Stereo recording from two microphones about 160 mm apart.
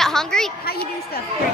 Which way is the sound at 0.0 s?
5° left (ahead or behind).